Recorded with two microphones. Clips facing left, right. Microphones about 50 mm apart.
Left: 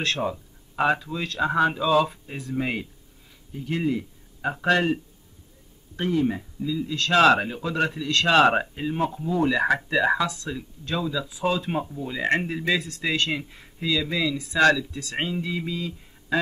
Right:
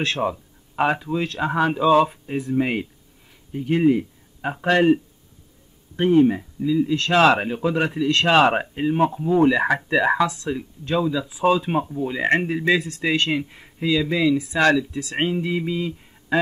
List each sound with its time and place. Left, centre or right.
0.0 s speech: centre
2.3 s speech: centre
2.6 s speech: right
5.9 s speech: right
10.2 s speech: centre
10.5 s speech: right
15.4 s a sound: right